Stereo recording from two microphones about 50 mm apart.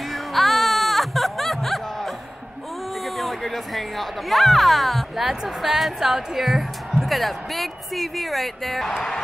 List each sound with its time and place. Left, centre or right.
0.1 s music: centre
3.2 s speech: centre